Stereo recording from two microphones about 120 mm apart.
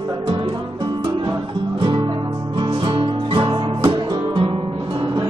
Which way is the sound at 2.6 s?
40° right (ahead or behind).